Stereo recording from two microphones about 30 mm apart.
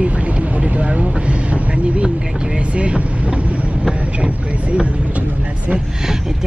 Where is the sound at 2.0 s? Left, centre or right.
Right.